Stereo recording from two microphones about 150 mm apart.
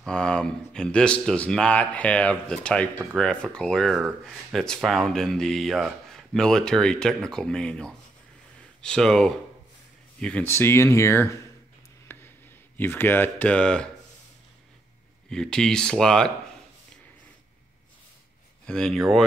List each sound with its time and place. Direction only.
0.0 s speech: 5° left (ahead or behind)
12.1 s a sound: 15° left (ahead or behind)
12.7 s speech: 15° left (ahead or behind)
15.2 s speech: 5° left (ahead or behind)
18.7 s speech: 5° left (ahead or behind)